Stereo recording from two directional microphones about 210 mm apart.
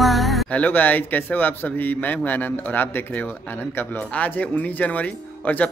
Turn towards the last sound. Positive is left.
turn(degrees=5)  # may be behind; listen again after turning